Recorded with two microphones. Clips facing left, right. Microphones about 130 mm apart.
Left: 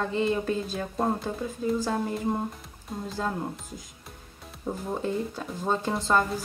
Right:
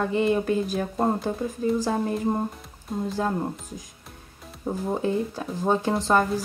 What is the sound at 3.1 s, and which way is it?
Speech, 15° right (ahead or behind).